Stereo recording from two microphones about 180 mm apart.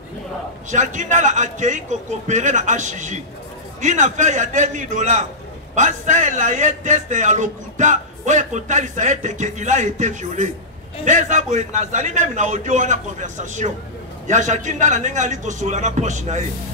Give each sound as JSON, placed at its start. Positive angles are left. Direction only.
{"t": 0.7, "sound": "a man's voice", "side_deg": -40}